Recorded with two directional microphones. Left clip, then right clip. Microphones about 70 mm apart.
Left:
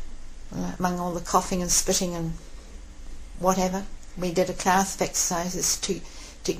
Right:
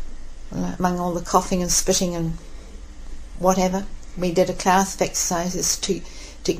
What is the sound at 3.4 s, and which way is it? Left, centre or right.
Speech, centre.